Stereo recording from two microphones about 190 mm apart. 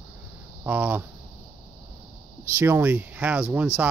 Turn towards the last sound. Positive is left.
turn(degrees=-5)  # may be behind; listen again after turning